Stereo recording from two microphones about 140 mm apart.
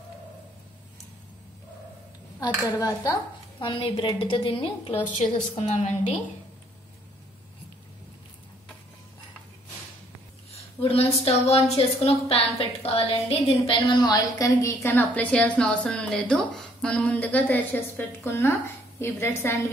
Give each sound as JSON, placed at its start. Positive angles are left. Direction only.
{"t": 2.4, "sound": "speech", "side_deg": 25}
{"t": 3.5, "sound": "a woman's voice", "side_deg": 35}
{"t": 5.2, "sound": "a woman's voice", "side_deg": 60}
{"t": 10.5, "sound": "a woman's voice", "side_deg": 45}